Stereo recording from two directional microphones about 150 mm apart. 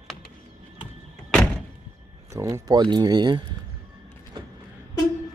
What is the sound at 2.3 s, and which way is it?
Speech, 20° right (ahead or behind).